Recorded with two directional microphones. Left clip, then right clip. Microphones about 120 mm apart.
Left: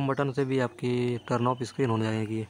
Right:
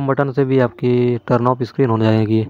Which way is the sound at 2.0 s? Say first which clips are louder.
Right 14 dB; 55° right (ahead or behind).